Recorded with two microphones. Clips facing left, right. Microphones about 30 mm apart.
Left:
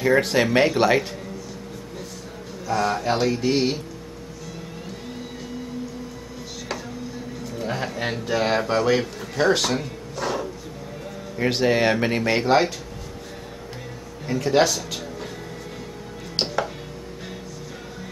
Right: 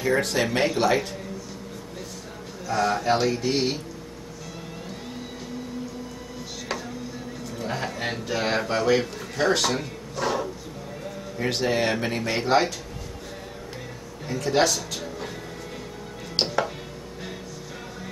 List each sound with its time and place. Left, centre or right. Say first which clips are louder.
0.0 s speech: left 4 dB; centre
2.7 s mantra: even; centre
6.7 s a sound: even; centre
7.5 s a man's voice: left 2 dB; centre
11.3 s speech: left 4 dB; centre
14.2 s speech: left 3 dB; centre
16.3 s music: even; centre